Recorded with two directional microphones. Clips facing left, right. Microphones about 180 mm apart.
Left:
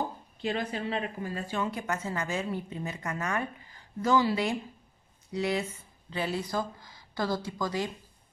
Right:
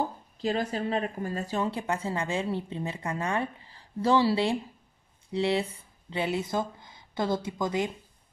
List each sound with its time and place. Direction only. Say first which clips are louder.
0.4 s speech: right 3 dB; 40° right (ahead or behind); by 7.9 s 20° right (ahead or behind)